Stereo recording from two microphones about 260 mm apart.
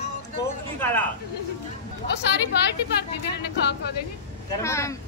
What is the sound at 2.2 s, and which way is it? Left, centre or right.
Speech, left.